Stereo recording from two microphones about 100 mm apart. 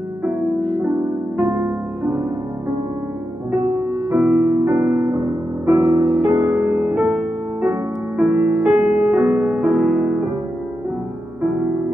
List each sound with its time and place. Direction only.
1.6 s music: 20° right (ahead or behind)
4.1 s music: 15° right (ahead or behind)